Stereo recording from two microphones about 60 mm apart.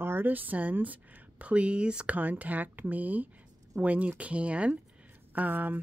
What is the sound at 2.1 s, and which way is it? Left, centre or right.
Speech, right.